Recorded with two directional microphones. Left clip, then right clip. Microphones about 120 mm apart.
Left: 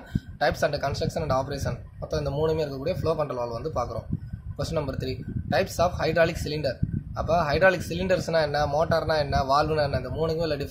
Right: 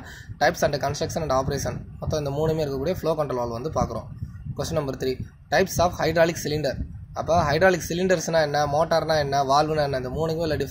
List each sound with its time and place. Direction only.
0.4 s speech: 35° right (ahead or behind)